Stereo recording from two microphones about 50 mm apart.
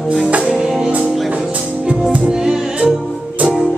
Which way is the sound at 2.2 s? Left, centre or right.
Centre.